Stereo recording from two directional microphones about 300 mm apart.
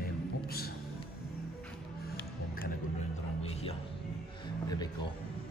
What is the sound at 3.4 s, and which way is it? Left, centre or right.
Music, centre.